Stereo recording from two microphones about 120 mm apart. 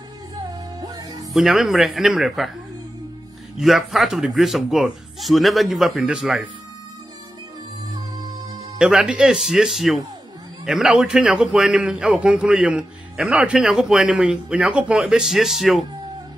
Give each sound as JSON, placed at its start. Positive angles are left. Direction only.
{"t": 0.7, "sound": "music", "side_deg": -30}
{"t": 1.3, "sound": "a man's voice", "side_deg": -5}
{"t": 3.5, "sound": "a man's voice", "side_deg": 0}
{"t": 8.7, "sound": "a man's voice", "side_deg": -5}